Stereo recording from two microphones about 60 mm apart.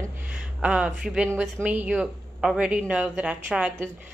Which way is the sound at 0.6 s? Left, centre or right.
Centre.